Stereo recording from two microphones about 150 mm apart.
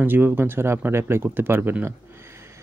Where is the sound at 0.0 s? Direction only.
15° right (ahead or behind).